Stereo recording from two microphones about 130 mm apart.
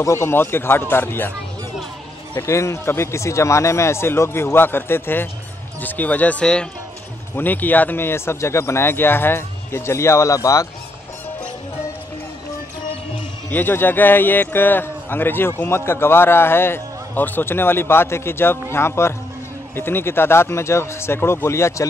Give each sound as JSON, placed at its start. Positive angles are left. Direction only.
{"t": 0.0, "sound": "a man's voice", "side_deg": 20}
{"t": 2.3, "sound": "a man's voice", "side_deg": 20}
{"t": 13.5, "sound": "a man's voice", "side_deg": 15}